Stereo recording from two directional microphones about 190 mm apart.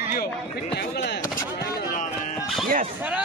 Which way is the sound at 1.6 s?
50° left (ahead or behind).